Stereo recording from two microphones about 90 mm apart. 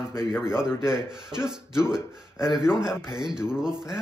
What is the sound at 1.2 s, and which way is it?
Speech, 10° right (ahead or behind).